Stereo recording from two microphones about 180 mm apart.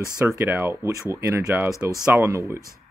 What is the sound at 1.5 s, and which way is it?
Speech, 5° right (ahead or behind).